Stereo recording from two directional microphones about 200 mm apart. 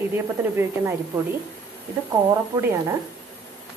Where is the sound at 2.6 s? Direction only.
10° right (ahead or behind).